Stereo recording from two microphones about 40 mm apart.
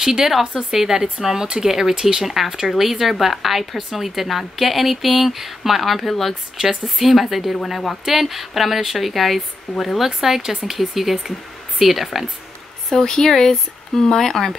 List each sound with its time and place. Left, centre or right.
0.0 s a woman's voice: centre
6.6 s speech: centre
7.0 s a woman's voice: centre
10.0 s a woman's voice: centre
12.9 s speech: centre